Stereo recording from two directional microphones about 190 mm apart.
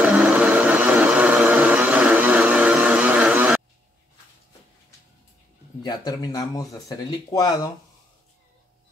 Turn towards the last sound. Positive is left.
turn(degrees=20)  # may be behind; listen again after turning